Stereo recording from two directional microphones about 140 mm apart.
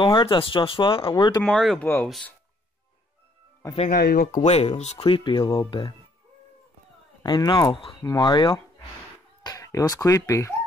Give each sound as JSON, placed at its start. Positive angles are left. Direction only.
{"t": 0.0, "sound": "speech", "side_deg": 35}
{"t": 1.4, "sound": "speech", "side_deg": 5}
{"t": 3.9, "sound": "speech", "side_deg": 90}
{"t": 7.2, "sound": "speech", "side_deg": 30}